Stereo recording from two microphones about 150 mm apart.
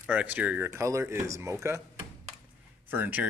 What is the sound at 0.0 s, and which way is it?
Speech, 10° right (ahead or behind).